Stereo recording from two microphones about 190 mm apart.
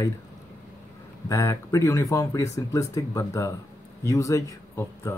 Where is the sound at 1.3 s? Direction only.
15° left (ahead or behind).